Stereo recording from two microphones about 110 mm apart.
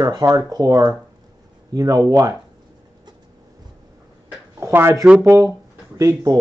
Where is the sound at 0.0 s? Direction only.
35° right (ahead or behind).